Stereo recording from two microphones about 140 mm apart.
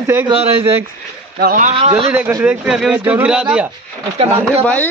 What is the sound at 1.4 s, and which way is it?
Speech, 90° right.